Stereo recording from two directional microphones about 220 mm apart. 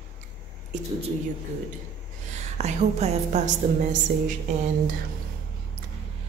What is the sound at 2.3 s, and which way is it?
A woman's voice, 30° right (ahead or behind).